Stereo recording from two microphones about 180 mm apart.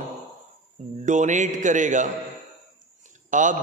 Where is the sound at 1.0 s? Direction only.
45° right (ahead or behind).